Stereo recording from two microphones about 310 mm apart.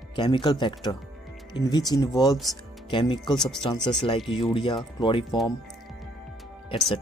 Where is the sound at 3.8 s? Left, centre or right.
Centre.